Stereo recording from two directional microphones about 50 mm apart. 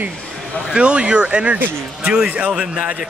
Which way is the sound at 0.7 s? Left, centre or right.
Centre.